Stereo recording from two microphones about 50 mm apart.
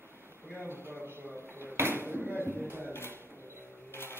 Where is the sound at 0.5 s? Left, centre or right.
Right.